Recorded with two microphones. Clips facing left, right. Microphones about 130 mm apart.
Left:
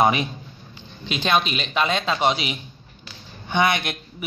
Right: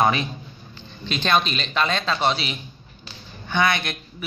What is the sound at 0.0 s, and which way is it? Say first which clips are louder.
Speech: left 1 dB; 15° left (ahead or behind).